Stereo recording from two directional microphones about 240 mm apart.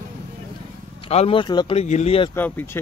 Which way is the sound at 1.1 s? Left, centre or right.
Left.